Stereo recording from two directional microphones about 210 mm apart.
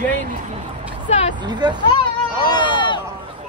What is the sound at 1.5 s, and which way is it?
Speech, 20° right (ahead or behind).